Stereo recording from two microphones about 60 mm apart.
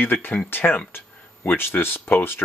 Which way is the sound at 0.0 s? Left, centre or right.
Left.